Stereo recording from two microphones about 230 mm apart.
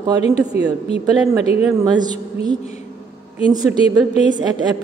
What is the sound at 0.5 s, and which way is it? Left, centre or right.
Speech, left.